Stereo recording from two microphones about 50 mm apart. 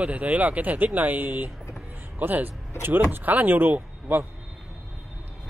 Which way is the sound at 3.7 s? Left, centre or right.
Right.